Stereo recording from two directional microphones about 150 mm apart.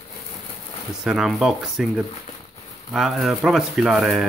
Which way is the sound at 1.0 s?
5° right (ahead or behind).